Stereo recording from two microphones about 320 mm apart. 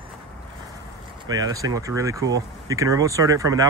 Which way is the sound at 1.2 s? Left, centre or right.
Centre.